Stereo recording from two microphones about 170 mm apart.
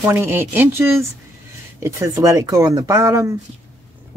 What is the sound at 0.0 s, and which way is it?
Speech, 15° right (ahead or behind).